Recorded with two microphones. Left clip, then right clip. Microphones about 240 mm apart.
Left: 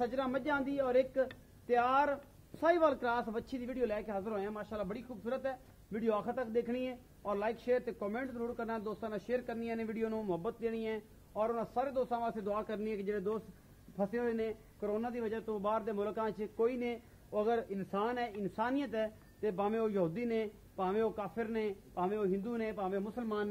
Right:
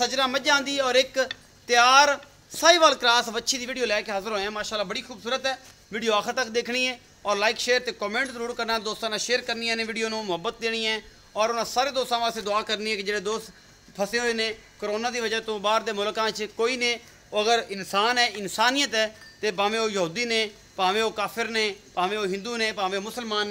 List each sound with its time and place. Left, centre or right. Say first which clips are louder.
0.0 s a man's voice: right 12 dB; centre